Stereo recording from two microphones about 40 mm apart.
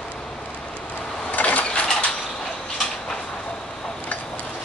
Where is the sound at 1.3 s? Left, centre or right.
Left.